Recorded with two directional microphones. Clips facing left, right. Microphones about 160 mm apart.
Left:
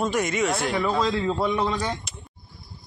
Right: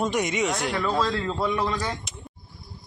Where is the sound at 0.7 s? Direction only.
15° left (ahead or behind).